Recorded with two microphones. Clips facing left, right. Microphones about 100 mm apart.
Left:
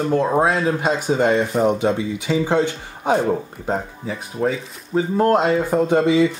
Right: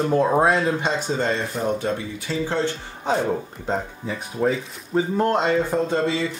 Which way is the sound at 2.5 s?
15° left (ahead or behind).